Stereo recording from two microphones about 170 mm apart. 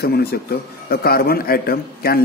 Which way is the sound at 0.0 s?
65° left (ahead or behind).